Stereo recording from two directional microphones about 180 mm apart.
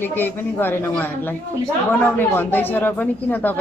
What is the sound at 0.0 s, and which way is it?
Speech, 10° left (ahead or behind).